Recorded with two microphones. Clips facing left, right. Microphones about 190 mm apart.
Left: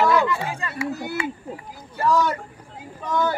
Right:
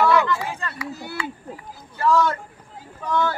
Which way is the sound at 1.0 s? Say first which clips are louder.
Left 4 dB; 20° left (ahead or behind).